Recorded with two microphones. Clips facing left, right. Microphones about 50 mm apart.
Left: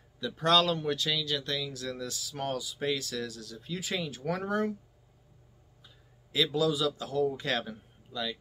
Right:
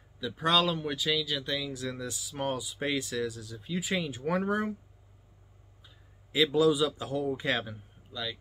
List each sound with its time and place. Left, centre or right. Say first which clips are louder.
0.2 s speech: left 1 dB; centre
6.3 s a man's voice: right 4 dB; right; by 8.4 s centre